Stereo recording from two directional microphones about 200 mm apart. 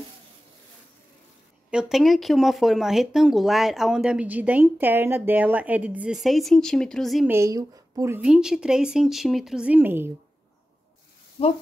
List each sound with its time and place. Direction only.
1.7 s speech: 5° right (ahead or behind)
7.2 s speech: 15° right (ahead or behind)
11.4 s speech: 30° left (ahead or behind)